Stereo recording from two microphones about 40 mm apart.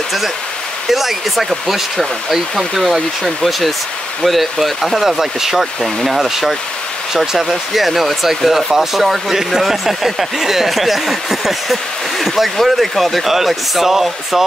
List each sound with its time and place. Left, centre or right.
0.8 s speech: centre